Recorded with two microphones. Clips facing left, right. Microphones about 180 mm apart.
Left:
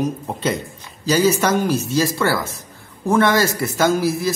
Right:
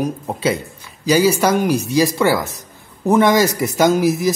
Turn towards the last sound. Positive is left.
turn(degrees=-15)  # may be behind; listen again after turning